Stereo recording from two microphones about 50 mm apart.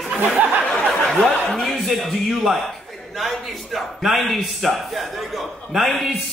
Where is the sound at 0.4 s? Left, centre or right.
Right.